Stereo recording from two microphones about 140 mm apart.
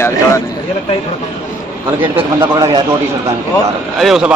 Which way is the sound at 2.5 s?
25° right (ahead or behind).